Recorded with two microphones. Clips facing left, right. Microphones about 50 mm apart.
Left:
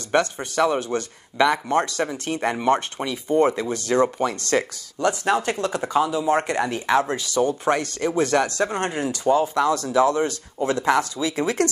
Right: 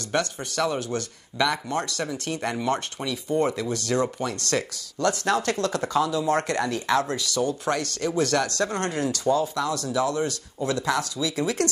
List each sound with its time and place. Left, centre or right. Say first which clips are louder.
0.1 s speech: left 5 dB; left